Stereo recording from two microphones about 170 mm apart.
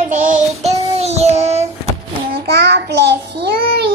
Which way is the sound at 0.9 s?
40° right (ahead or behind).